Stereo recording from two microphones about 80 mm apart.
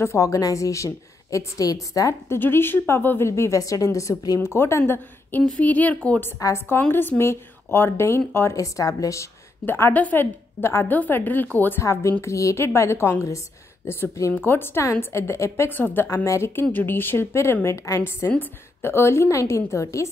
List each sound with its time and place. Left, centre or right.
0.0 s a woman's voice: left
2.3 s a woman's voice: left
3.3 s a woman's voice: left; by 6.2 s centre
6.4 s a woman's voice: left
8.5 s a woman's voice: left
9.7 s a woman's voice: left
9.9 s a woman's voice: centre
10.6 s a woman's voice: left
11.8 s a woman's voice: left
17.6 s a woman's voice: left
18.4 s a woman's voice: left